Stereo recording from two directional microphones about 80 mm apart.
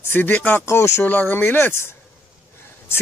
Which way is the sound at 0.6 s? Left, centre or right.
Left.